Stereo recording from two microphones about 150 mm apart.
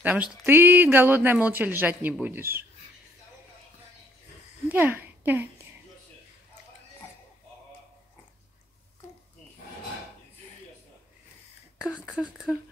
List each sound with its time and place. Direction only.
0.0 s speech: 10° right (ahead or behind)
4.6 s speech: 10° right (ahead or behind)